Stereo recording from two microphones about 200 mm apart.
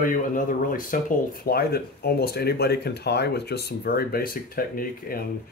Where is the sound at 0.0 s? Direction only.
40° left (ahead or behind).